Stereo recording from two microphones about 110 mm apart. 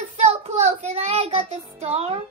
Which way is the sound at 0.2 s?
80° right.